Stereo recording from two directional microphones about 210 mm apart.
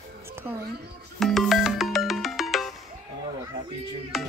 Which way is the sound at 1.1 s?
Centre (ahead or behind).